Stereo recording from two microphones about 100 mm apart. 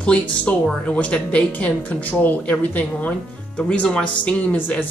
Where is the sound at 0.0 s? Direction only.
10° left (ahead or behind).